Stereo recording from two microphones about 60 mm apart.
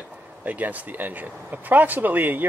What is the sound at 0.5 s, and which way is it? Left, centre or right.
Speech, right.